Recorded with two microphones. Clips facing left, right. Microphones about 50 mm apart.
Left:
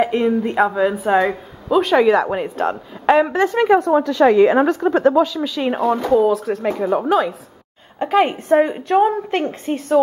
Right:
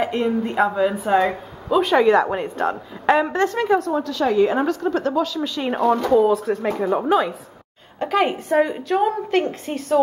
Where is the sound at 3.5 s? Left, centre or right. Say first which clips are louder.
Left 5 dB; left.